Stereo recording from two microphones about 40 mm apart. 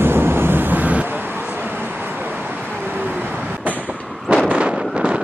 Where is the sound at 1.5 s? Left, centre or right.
Right.